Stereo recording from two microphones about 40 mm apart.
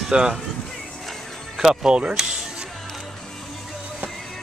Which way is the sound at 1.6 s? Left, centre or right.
Centre.